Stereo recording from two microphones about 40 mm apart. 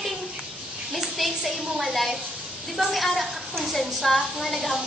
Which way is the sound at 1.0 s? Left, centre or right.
Centre.